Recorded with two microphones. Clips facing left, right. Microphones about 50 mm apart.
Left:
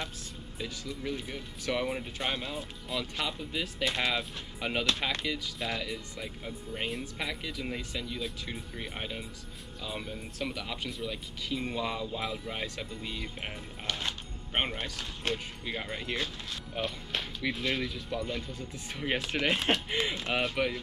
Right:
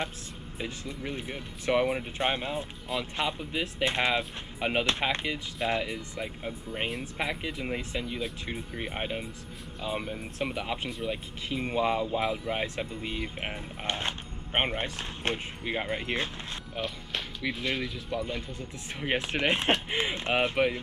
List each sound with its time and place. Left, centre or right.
0.6 s speech: right
16.7 s speech: centre; by 20.8 s right